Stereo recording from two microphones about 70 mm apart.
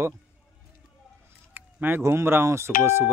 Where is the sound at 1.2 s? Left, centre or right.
Right.